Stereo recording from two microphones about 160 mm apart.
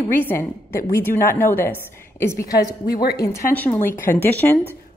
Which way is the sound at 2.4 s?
75° left (ahead or behind).